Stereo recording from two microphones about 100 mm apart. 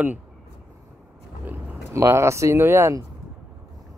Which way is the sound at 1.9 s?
30° right (ahead or behind).